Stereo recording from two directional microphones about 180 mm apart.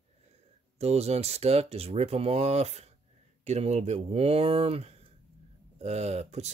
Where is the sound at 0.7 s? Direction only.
35° right (ahead or behind).